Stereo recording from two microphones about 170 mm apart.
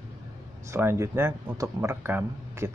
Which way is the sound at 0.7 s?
15° right (ahead or behind).